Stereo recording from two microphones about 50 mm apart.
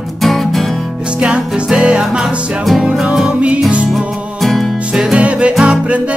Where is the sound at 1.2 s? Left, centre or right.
Centre.